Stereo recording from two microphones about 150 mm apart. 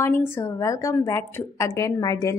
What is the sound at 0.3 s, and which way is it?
A woman's voice, 15° left (ahead or behind).